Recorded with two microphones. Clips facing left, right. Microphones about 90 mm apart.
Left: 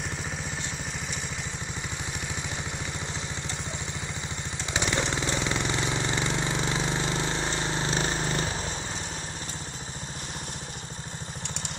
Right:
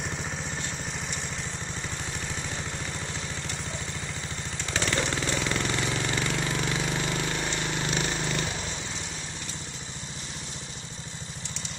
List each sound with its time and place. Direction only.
4.6 s engine: 15° left (ahead or behind); by 8.7 s 35° left (ahead or behind)